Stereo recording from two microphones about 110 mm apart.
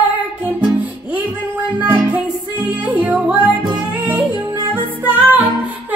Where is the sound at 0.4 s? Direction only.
15° right (ahead or behind).